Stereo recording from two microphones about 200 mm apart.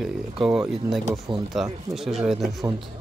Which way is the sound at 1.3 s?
25° right (ahead or behind).